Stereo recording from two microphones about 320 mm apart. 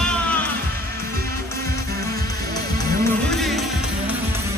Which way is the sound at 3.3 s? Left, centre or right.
Centre.